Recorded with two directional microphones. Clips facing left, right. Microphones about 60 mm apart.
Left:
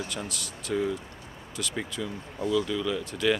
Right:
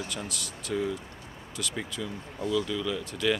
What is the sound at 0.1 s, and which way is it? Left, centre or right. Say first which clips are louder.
Speech: left 1 dB; left.